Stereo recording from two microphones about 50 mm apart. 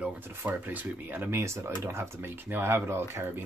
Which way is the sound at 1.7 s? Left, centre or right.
Right.